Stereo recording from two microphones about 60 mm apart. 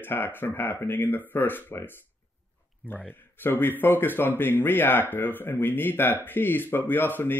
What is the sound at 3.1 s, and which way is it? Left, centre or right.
Speech, left.